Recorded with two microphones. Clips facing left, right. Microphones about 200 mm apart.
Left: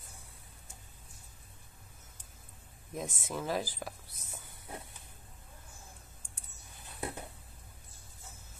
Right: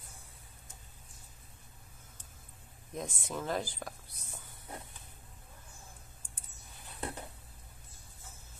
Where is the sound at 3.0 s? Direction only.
5° left (ahead or behind).